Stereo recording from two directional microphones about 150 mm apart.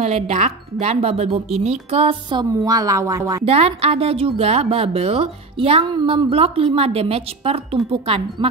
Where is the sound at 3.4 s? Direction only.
40° right (ahead or behind).